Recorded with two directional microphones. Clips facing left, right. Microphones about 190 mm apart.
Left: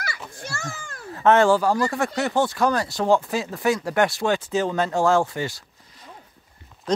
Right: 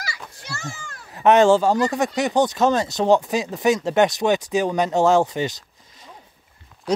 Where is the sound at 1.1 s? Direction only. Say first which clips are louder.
Right 3 dB; 20° right (ahead or behind).